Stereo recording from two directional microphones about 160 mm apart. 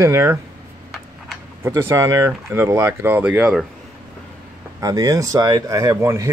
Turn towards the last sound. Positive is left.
turn(degrees=-20)  # may be behind; listen again after turning